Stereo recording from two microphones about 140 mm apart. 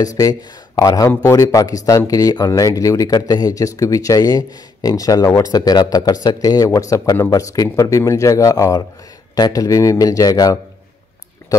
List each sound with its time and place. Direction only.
0.0 s speech: 25° left (ahead or behind)